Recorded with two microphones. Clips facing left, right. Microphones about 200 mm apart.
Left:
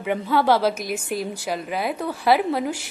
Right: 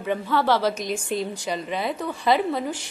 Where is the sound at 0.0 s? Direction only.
10° left (ahead or behind).